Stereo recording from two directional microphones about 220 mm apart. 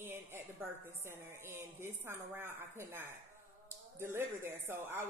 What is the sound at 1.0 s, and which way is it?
Speech, 10° right (ahead or behind).